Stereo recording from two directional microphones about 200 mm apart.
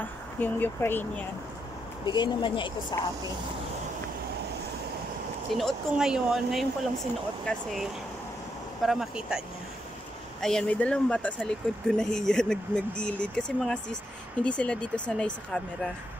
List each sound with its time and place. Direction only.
0.4 s speech: 10° left (ahead or behind)
2.0 s speech: 20° left (ahead or behind)
5.5 s speech: centre (ahead or behind)
10.4 s speech: 5° left (ahead or behind)